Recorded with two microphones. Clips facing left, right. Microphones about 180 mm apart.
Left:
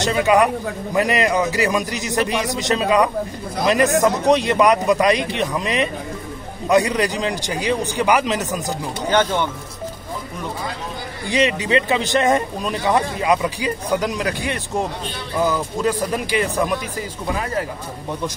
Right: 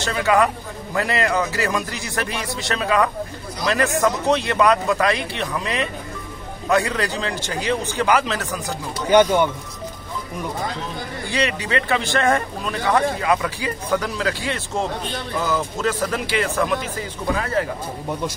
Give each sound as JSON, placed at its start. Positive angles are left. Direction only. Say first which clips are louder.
{"t": 0.0, "sound": "a man's voice", "louder": "left 3 dB", "side_deg": 20}
{"t": 9.1, "sound": "speech", "louder": "right 4 dB", "side_deg": -10}
{"t": 11.2, "sound": "speech", "louder": "left 5 dB", "side_deg": 20}